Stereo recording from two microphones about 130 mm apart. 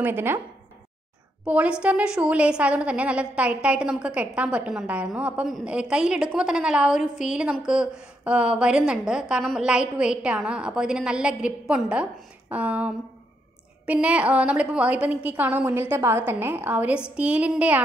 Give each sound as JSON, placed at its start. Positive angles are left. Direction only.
{"t": 0.0, "sound": "a woman's voice", "side_deg": -20}
{"t": 1.4, "sound": "a woman's voice", "side_deg": -10}